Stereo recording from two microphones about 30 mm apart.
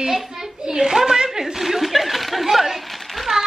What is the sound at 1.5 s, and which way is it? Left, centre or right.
A woman's voice, centre.